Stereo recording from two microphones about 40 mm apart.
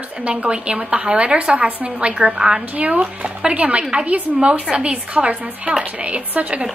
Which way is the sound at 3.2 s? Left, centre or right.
Right.